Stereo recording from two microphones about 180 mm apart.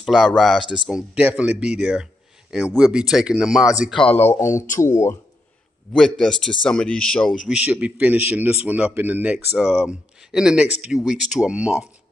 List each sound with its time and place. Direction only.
0.0 s speech: centre (ahead or behind); by 5.1 s 15° left (ahead or behind)
5.9 s speech: centre (ahead or behind)